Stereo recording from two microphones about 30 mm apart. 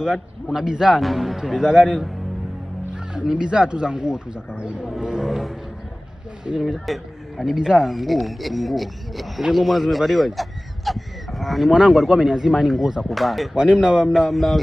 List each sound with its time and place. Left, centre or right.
0.0 s speech: right
1.0 s speech: centre
1.4 s speech: centre
1.7 s speech: right
5.2 s speech: centre
6.5 s speech: right
6.9 s speech: centre
7.4 s speech: right
7.8 s speech: centre
12.1 s speech: centre
13.6 s speech: right
14.0 s speech: centre
14.3 s speech: centre